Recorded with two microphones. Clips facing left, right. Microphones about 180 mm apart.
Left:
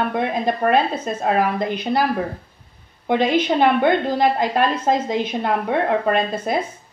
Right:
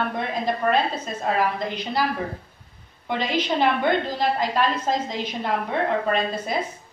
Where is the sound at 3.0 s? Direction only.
55° left (ahead or behind).